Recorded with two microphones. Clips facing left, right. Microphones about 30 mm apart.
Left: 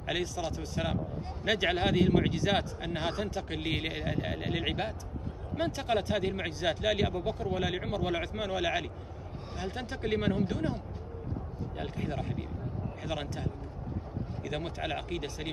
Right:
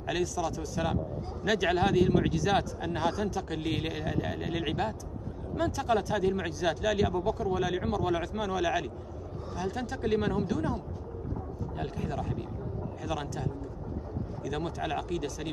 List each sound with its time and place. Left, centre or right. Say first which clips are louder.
0.0 s speech: right 3 dB; left
10.4 s speech: right 1 dB; left